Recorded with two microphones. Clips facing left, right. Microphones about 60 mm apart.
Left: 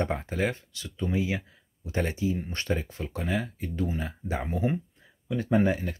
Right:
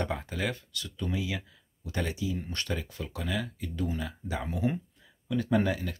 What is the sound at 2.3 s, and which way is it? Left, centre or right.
Speech, centre.